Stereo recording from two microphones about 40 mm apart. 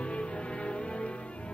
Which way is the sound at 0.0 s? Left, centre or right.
Left.